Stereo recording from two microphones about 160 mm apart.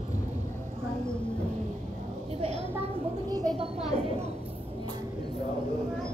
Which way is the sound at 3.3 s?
25° right (ahead or behind).